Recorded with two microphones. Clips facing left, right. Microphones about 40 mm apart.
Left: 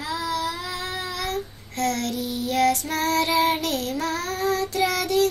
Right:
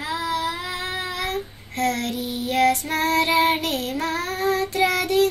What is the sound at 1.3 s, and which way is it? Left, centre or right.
Child singing, centre.